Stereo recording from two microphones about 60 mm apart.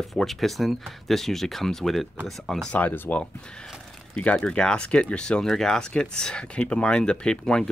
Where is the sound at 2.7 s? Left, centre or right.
Left.